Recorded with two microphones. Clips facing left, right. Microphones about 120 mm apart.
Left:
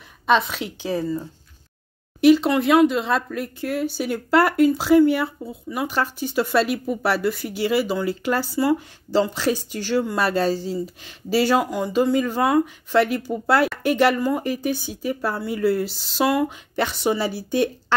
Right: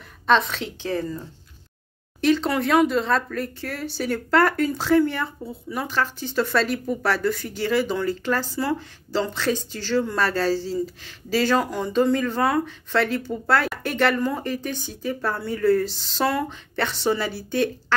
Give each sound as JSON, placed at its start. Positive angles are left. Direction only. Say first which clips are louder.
{"t": 0.3, "sound": "speech", "louder": "left 1 dB", "side_deg": 5}
{"t": 2.2, "sound": "speech", "louder": "left 5 dB", "side_deg": 5}
{"t": 5.9, "sound": "speech", "louder": "left 1 dB", "side_deg": 15}